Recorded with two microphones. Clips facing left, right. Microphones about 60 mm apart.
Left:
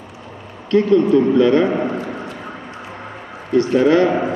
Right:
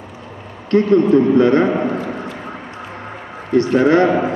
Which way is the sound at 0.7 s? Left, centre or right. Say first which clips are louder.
Right 1 dB; right.